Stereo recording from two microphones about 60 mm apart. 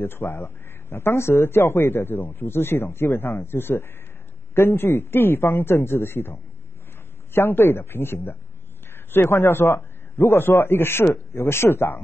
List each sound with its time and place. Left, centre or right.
0.0 s speech: left
7.3 s a man's voice: left